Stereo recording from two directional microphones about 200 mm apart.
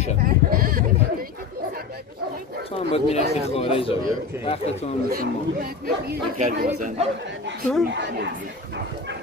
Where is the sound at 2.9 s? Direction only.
30° left (ahead or behind).